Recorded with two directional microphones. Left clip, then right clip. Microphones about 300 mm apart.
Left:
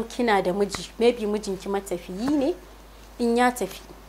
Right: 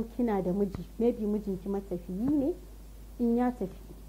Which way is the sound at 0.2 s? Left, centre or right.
Centre.